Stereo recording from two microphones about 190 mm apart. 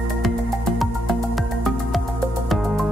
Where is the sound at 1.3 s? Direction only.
Centre (ahead or behind).